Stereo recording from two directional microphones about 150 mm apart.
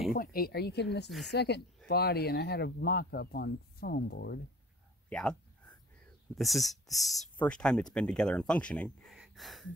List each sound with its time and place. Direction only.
0.1 s speech: 80° left
5.1 s speech: 5° left (ahead or behind)
9.1 s gasp: centre (ahead or behind)